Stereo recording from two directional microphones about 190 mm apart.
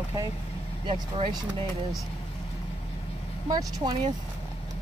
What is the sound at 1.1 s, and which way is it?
Speech, 25° right (ahead or behind).